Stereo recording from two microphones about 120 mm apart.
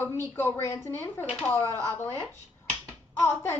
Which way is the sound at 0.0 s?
20° left (ahead or behind).